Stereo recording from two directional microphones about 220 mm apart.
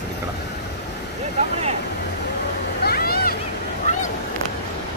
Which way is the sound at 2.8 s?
45° left (ahead or behind).